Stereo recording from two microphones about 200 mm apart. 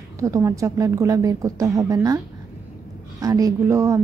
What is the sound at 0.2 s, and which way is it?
Speech, 15° right (ahead or behind).